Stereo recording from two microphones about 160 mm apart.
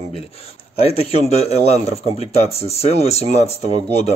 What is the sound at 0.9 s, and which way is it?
Speech, 40° left (ahead or behind).